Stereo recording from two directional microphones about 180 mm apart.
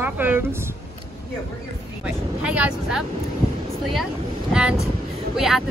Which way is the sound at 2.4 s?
5° right (ahead or behind).